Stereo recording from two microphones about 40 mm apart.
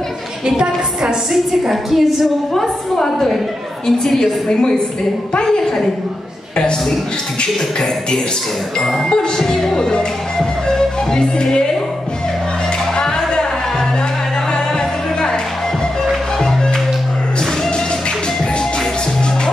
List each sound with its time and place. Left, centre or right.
0.5 s a woman's voice: right
1.3 s a woman's voice: centre
2.5 s a woman's voice: centre
7.4 s a woman's voice: centre
12.9 s music: left